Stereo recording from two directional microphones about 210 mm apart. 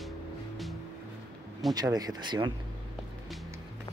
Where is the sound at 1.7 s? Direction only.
20° right (ahead or behind).